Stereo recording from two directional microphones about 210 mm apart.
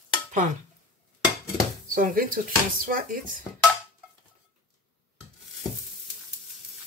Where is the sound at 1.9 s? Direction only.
40° right (ahead or behind).